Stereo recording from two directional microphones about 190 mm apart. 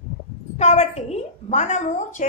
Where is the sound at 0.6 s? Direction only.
35° left (ahead or behind).